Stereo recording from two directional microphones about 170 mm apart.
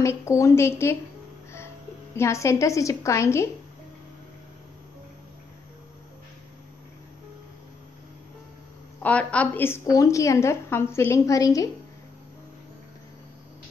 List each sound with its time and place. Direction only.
0.0 s a woman's voice: 15° left (ahead or behind)
2.1 s a woman's voice: 15° left (ahead or behind)
9.0 s a woman's voice: 10° left (ahead or behind)